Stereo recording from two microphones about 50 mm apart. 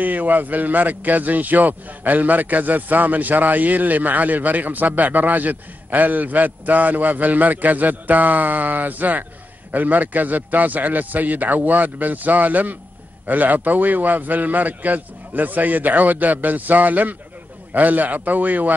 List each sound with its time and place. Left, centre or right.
0.0 s speech: right